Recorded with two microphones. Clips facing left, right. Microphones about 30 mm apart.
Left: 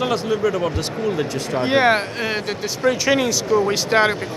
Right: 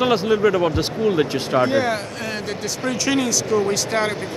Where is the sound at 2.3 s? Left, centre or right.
Centre.